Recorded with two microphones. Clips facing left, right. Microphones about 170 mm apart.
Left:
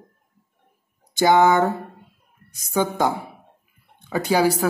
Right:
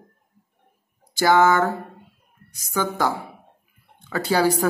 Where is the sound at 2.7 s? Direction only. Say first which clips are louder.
Left 2 dB; 20° left (ahead or behind).